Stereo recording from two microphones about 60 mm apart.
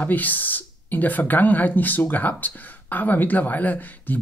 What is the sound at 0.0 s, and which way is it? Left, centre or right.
Speech, left.